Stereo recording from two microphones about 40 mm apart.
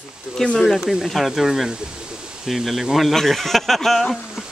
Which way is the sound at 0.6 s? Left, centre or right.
Centre.